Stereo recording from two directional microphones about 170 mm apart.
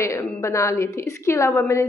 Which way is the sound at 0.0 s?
15° left (ahead or behind).